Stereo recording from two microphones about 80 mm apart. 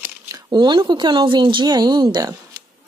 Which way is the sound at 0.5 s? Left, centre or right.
Right.